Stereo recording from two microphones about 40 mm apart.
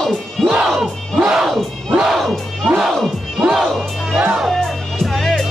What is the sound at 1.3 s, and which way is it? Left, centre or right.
Crowd, centre.